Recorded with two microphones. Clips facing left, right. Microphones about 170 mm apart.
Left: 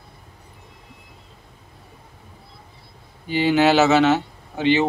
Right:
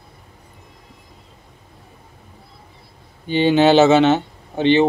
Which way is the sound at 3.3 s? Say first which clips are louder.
Right 3 dB; 30° right (ahead or behind).